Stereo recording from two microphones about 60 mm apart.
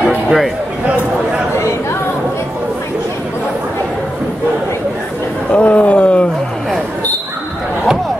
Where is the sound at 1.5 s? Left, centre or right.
Left.